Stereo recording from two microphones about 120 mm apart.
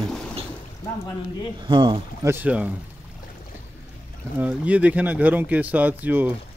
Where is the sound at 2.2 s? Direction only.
15° right (ahead or behind).